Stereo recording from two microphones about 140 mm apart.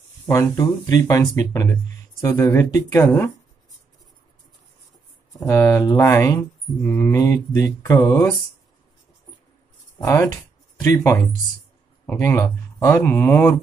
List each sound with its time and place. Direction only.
0.3 s speech: 25° left (ahead or behind)
5.4 s speech: 20° left (ahead or behind)
9.9 s speech: 25° left (ahead or behind)